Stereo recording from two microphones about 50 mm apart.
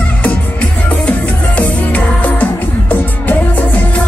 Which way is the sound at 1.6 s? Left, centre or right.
Left.